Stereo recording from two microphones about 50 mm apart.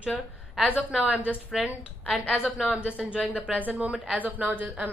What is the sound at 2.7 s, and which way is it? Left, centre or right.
A woman's voice, right.